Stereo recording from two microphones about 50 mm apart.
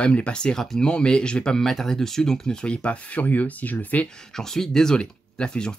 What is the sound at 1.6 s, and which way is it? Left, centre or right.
Speech, centre.